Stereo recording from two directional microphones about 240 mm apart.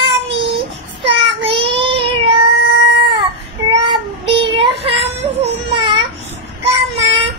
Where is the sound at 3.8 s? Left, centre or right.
Right.